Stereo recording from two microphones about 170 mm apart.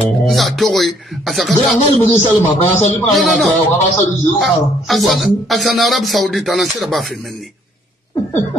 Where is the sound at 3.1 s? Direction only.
Centre (ahead or behind).